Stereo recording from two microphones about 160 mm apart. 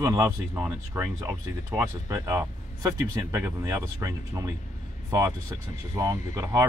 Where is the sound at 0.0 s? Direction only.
15° right (ahead or behind).